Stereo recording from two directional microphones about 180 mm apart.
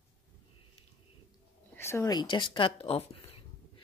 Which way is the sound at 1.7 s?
15° left (ahead or behind).